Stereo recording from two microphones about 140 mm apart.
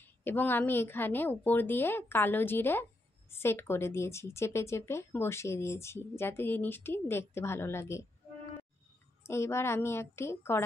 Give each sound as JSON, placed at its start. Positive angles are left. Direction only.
{"t": 0.0, "sound": "a woman's voice", "side_deg": 15}
{"t": 9.2, "sound": "a woman's voice", "side_deg": 20}